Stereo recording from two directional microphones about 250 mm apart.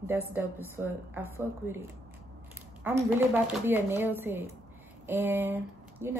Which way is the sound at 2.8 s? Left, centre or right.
Centre.